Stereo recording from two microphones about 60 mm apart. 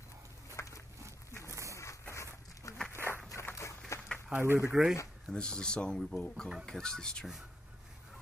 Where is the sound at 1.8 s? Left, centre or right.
Left.